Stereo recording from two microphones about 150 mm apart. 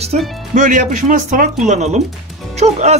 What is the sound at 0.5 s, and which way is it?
A man's voice, 60° right (ahead or behind).